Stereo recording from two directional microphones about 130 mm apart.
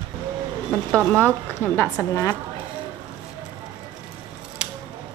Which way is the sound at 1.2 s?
15° left (ahead or behind).